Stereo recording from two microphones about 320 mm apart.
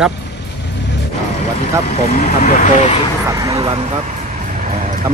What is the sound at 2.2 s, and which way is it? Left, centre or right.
Speech, left.